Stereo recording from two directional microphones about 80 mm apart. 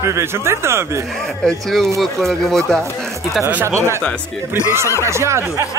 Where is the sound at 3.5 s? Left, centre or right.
Right.